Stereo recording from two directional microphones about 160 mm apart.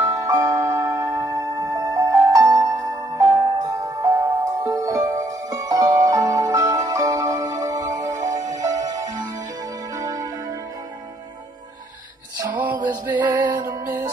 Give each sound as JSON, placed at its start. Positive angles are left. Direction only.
{"t": 0.1, "sound": "music", "side_deg": -20}
{"t": 12.4, "sound": "music", "side_deg": -10}
{"t": 12.8, "sound": "music", "side_deg": -25}